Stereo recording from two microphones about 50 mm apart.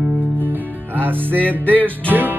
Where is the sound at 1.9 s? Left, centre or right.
Right.